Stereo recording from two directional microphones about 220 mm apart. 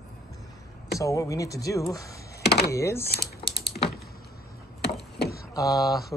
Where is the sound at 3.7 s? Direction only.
35° left (ahead or behind).